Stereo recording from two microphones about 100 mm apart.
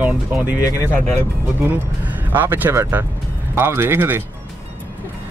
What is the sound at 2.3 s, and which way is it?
Speech, 20° right (ahead or behind).